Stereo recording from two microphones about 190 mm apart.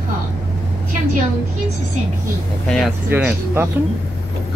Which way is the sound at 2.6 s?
Centre (ahead or behind).